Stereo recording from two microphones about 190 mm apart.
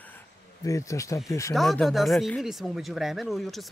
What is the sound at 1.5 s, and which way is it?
Speech, centre (ahead or behind).